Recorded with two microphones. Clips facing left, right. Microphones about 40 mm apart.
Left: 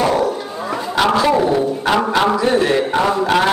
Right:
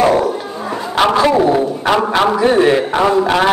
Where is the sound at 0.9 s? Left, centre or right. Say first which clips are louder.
Right 3 dB; right.